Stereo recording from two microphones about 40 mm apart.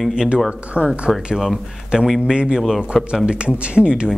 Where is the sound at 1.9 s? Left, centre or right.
Right.